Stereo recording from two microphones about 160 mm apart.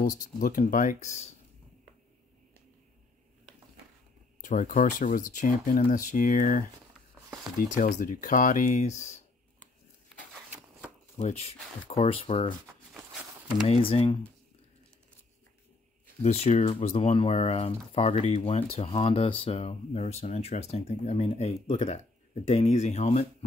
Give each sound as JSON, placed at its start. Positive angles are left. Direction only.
{"t": 0.0, "sound": "speech", "side_deg": 55}
{"t": 4.4, "sound": "speech", "side_deg": 55}
{"t": 7.6, "sound": "speech", "side_deg": 50}
{"t": 11.1, "sound": "speech", "side_deg": 40}
{"t": 12.9, "sound": "a sound", "side_deg": -5}
{"t": 13.7, "sound": "speech", "side_deg": 40}
{"t": 16.2, "sound": "speech", "side_deg": 40}